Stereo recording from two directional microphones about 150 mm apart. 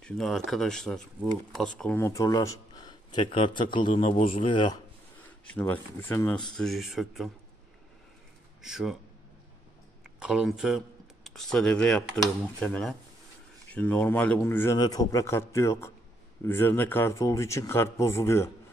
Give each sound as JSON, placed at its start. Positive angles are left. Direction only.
{"t": 0.0, "sound": "speech", "side_deg": 5}
{"t": 2.0, "sound": "speech", "side_deg": 20}
{"t": 3.9, "sound": "speech", "side_deg": 45}
{"t": 5.5, "sound": "speech", "side_deg": 10}
{"t": 8.6, "sound": "speech", "side_deg": -5}
{"t": 10.1, "sound": "a man's voice", "side_deg": -5}